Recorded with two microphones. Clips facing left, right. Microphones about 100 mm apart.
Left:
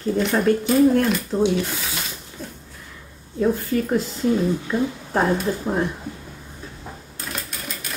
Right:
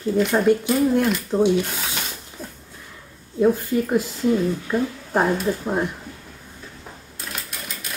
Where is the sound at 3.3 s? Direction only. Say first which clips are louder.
Right 2 dB; 15° right (ahead or behind).